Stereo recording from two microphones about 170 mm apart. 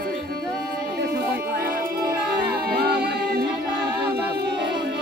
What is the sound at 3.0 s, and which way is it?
A capella, 70° right (ahead or behind).